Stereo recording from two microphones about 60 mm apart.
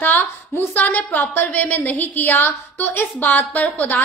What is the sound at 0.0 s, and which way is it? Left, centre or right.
A woman's voice, left.